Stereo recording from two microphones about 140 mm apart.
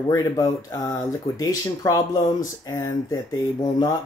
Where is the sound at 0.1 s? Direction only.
20° left (ahead or behind).